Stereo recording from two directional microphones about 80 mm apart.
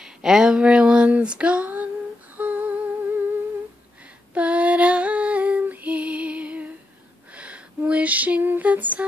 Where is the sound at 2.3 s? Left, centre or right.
Centre.